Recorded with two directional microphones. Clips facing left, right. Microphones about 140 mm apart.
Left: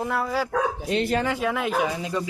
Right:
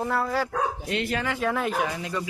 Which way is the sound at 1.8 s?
20° left (ahead or behind).